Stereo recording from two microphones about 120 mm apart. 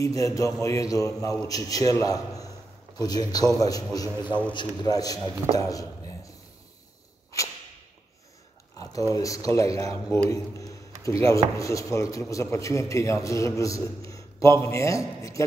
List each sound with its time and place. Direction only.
0.0 s a man's voice: 25° left (ahead or behind)
4.3 s a man's voice: 10° left (ahead or behind)
4.6 s a man's voice: 30° left (ahead or behind)
5.5 s a sound: 30° left (ahead or behind)
8.7 s a sound: 30° left (ahead or behind)
9.1 s a man's voice: 30° left (ahead or behind)